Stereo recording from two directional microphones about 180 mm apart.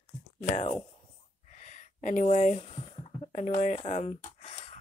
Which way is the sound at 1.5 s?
45° left (ahead or behind).